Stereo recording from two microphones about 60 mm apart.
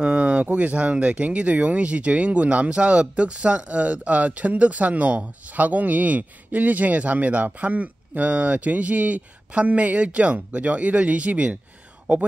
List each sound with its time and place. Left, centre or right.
0.0 s speech: centre